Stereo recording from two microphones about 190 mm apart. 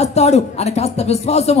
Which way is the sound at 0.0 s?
35° left (ahead or behind).